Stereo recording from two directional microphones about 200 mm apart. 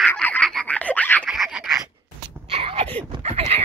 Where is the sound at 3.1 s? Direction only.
30° right (ahead or behind).